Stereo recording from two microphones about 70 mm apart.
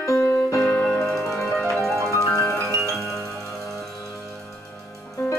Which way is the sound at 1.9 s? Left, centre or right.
Right.